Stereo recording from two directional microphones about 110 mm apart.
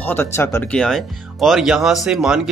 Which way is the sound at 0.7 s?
5° left (ahead or behind).